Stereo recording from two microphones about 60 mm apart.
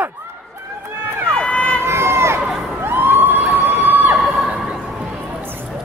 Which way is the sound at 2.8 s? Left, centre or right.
Right.